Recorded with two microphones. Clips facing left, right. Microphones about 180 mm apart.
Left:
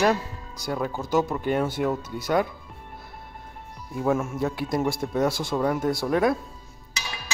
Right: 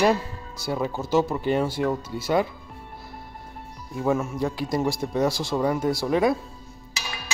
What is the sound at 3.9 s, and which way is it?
Speech, centre (ahead or behind).